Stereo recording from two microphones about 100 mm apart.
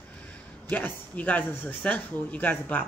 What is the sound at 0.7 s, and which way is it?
Speech, 15° left (ahead or behind).